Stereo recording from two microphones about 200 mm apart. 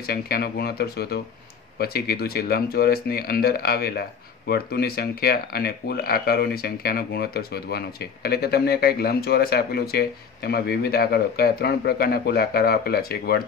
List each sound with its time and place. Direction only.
0.0 s speech: 50° left (ahead or behind)